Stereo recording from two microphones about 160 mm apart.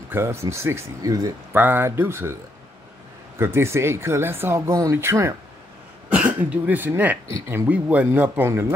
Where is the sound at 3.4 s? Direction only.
15° right (ahead or behind).